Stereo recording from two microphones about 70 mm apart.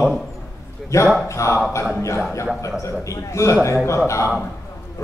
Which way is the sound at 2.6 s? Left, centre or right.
Left.